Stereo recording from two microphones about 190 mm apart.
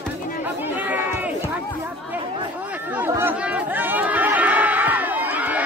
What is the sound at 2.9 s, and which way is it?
Chatter, 10° right (ahead or behind).